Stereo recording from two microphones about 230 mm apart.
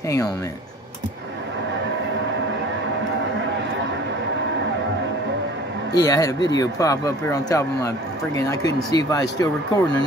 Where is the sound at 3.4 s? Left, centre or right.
Right.